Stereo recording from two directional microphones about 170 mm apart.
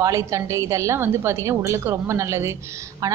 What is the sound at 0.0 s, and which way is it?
A woman's voice, 20° right (ahead or behind).